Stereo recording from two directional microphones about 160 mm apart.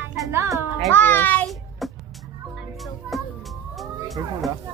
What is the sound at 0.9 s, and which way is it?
Music, 15° left (ahead or behind).